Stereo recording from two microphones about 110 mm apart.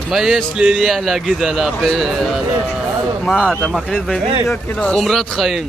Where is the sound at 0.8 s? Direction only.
Centre (ahead or behind).